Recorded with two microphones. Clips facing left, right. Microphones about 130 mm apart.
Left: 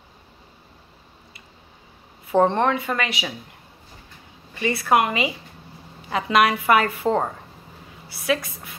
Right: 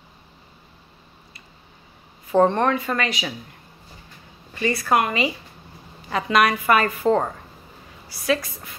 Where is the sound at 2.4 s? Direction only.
25° left (ahead or behind).